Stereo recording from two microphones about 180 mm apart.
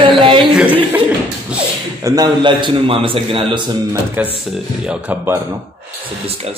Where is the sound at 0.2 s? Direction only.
30° right (ahead or behind).